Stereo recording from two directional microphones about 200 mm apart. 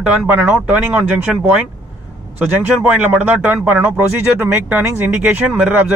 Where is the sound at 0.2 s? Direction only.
5° right (ahead or behind).